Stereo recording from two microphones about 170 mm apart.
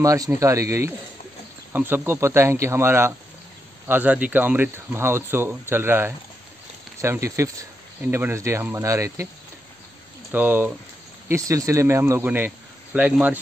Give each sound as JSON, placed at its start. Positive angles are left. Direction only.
{"t": 0.0, "sound": "speech", "side_deg": -20}
{"t": 10.3, "sound": "speech", "side_deg": -10}